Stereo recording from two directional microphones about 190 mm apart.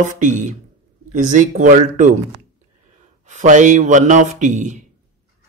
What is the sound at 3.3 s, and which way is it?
A man's voice, 40° right (ahead or behind).